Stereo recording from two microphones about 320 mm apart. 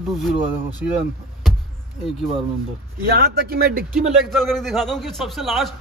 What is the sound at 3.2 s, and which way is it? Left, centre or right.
Speech, right.